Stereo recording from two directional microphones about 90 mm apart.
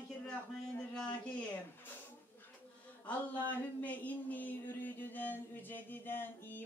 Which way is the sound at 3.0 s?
15° left (ahead or behind).